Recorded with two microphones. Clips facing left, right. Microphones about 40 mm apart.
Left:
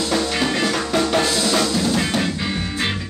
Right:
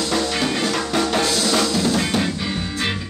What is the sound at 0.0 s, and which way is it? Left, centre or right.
Music, centre.